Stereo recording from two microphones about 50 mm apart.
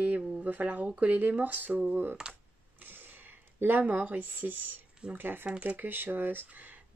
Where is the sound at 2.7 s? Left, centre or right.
Right.